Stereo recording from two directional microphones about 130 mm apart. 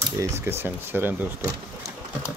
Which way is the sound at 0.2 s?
20° right (ahead or behind).